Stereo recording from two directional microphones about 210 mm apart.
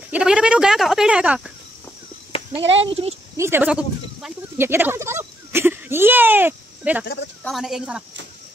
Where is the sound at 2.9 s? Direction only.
25° right (ahead or behind).